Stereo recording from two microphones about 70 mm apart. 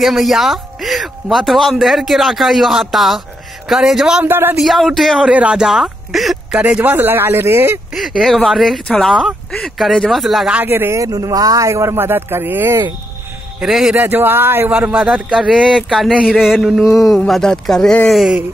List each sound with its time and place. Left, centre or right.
0.0 s a man's voice: centre
4.2 s speech: right
4.6 s a man's voice: centre
5.3 s speech: centre
6.8 s speech: right
7.9 s a man's voice: centre
8.8 s a man's voice: centre
10.6 s speech: right
11.0 s speech: right
13.6 s a man's voice: centre
13.9 s speech: right
14.7 s a man's voice: centre
15.7 s a man's voice: centre
17.3 s speech: centre